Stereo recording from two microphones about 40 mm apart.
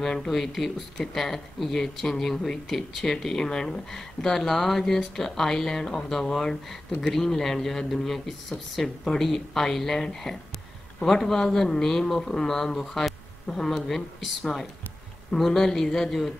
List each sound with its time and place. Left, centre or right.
0.0 s speech: centre
0.3 s speech: centre
13.6 s speech: centre